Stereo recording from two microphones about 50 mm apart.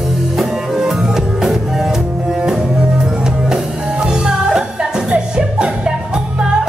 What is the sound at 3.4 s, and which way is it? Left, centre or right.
Music, centre.